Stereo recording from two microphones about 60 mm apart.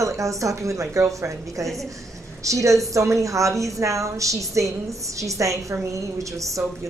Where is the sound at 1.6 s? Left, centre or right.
Centre.